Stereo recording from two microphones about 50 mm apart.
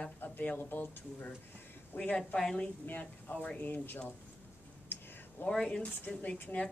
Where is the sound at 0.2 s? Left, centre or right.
Left.